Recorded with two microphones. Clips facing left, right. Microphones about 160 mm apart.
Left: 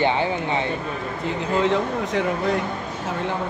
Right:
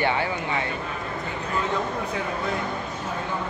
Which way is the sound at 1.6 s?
90° left.